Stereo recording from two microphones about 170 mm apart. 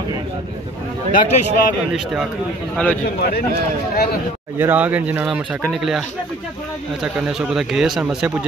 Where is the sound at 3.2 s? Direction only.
65° left (ahead or behind).